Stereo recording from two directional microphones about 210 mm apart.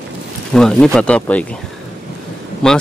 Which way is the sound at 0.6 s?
5° left (ahead or behind).